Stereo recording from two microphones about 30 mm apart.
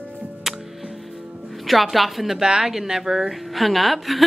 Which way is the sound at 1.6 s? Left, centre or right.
Centre.